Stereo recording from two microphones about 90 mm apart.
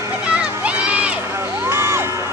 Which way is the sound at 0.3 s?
15° right (ahead or behind).